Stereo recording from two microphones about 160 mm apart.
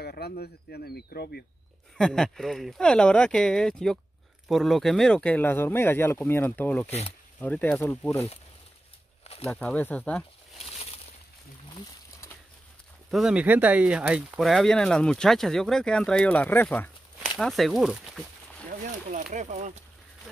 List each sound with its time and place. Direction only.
0.0 s speech: 75° left (ahead or behind)
2.0 s speech: 5° left (ahead or behind)
6.9 s speech: 40° left (ahead or behind)
7.3 s speech: 10° left (ahead or behind)
9.5 s speech: 10° left (ahead or behind)
13.1 s speech: 5° right (ahead or behind)
14.5 s speech: 5° left (ahead or behind)
17.4 s speech: centre (ahead or behind)
18.7 s a sound: 50° right (ahead or behind)
19.3 s speech: 50° right (ahead or behind)